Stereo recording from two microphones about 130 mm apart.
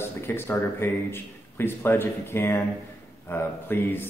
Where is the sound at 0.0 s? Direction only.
20° left (ahead or behind).